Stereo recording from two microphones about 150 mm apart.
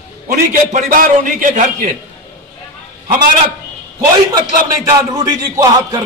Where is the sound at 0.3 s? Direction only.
60° right (ahead or behind).